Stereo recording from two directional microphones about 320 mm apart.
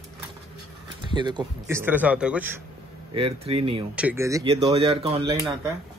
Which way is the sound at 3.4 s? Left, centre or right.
Centre.